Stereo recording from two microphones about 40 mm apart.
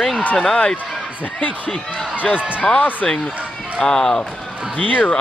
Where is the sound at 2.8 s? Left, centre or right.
Left.